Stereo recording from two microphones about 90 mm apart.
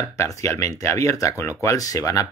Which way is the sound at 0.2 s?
30° left (ahead or behind).